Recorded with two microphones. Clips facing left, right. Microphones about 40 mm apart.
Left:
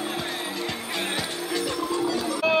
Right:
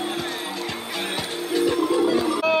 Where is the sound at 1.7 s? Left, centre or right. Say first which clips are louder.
Right 7 dB; right.